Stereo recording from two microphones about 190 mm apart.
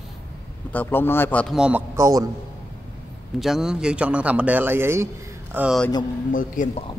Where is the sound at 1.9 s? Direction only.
15° right (ahead or behind).